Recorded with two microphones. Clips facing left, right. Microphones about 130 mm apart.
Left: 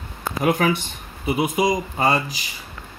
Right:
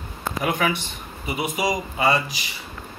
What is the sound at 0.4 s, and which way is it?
Speech, 45° left (ahead or behind).